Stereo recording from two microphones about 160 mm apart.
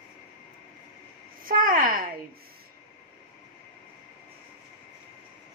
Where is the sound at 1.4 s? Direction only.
60° right (ahead or behind).